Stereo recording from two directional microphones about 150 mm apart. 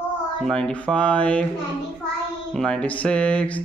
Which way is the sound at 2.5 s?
5° left (ahead or behind).